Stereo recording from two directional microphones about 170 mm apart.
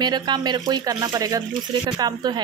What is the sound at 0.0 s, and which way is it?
Speech, 25° right (ahead or behind).